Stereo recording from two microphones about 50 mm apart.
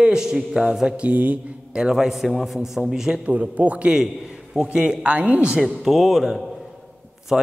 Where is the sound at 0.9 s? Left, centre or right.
Right.